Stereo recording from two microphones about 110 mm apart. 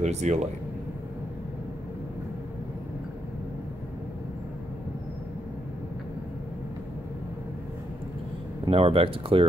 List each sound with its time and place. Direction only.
0.0 s speech: 90° right
8.6 s speech: 60° right (ahead or behind)